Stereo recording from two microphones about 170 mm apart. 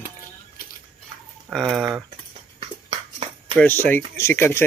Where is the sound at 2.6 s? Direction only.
35° right (ahead or behind).